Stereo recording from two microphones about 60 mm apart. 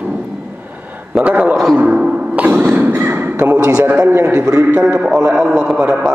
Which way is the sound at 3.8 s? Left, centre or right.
Right.